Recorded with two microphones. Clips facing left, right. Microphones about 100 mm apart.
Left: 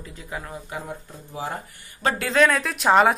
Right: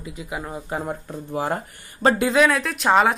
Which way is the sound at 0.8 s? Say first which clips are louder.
Right 7 dB; 60° right (ahead or behind).